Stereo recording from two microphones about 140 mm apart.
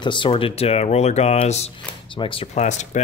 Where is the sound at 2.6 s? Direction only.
55° left (ahead or behind).